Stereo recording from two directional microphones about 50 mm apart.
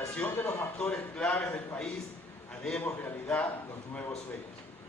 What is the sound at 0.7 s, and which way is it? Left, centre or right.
Speech, left.